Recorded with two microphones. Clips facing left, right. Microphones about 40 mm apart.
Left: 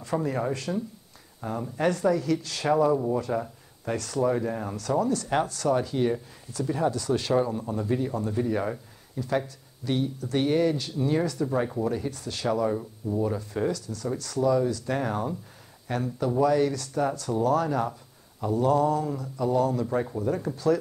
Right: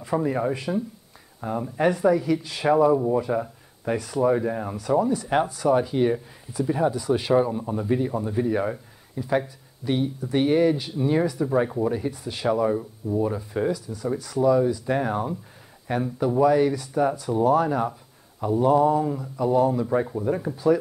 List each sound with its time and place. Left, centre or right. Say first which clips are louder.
0.0 s speech: right 4 dB; centre